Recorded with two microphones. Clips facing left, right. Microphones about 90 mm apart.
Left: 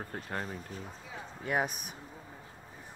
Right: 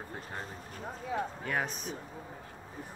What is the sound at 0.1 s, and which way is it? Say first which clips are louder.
Speech: left 4 dB; 55° left (ahead or behind).